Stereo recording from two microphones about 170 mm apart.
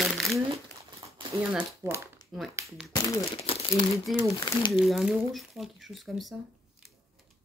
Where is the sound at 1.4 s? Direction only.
10° right (ahead or behind).